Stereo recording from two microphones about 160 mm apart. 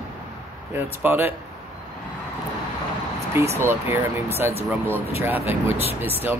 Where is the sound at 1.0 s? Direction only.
15° right (ahead or behind).